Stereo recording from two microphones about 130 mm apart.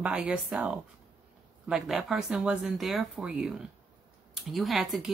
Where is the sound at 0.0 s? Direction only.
10° right (ahead or behind).